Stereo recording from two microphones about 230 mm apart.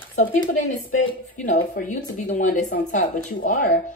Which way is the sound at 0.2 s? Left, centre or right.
Left.